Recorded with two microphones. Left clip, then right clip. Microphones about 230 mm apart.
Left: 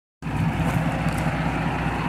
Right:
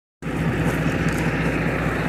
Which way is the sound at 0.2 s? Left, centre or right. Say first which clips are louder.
Right 3 dB; left.